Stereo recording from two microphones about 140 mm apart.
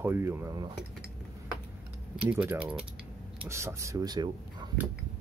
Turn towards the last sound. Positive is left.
turn(degrees=-30)  # may be behind; listen again after turning